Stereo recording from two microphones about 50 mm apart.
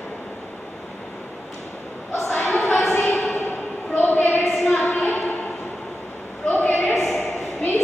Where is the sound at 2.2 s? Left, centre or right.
Left.